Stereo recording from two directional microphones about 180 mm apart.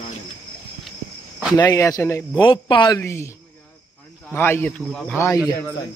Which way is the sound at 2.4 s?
25° left (ahead or behind).